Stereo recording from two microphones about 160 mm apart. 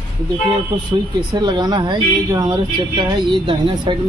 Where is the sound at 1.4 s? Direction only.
25° right (ahead or behind).